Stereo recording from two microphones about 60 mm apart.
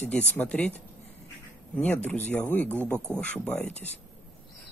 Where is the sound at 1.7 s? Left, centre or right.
Left.